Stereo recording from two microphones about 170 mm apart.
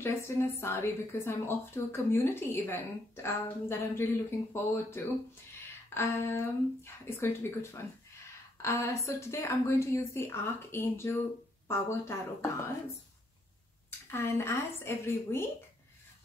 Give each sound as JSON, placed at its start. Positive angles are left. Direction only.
{"t": 0.0, "sound": "a woman's voice", "side_deg": 15}
{"t": 13.8, "sound": "a woman's voice", "side_deg": 15}